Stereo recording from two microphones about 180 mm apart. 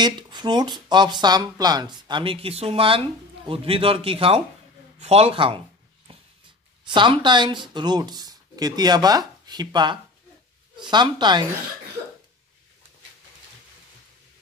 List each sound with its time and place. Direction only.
0.0 s a man's voice: 25° right (ahead or behind)
6.1 s a sound: 30° right (ahead or behind)
6.9 s speech: 25° right (ahead or behind)